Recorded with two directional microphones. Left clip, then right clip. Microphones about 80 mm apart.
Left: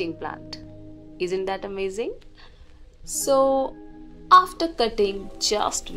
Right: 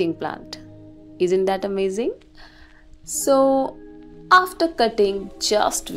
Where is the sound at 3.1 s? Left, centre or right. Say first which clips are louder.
Right 3 dB; right.